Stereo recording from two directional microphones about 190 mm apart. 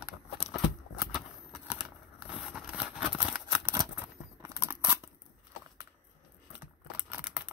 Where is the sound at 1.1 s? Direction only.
Centre (ahead or behind).